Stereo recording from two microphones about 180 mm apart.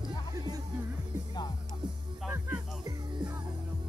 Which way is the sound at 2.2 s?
15° right (ahead or behind).